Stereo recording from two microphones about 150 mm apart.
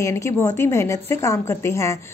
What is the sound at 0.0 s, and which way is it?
A woman's voice, 20° left (ahead or behind).